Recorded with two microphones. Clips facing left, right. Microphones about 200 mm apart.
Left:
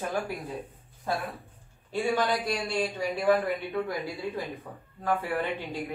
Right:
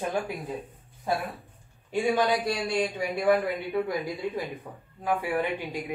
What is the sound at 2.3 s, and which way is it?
Speech, centre (ahead or behind).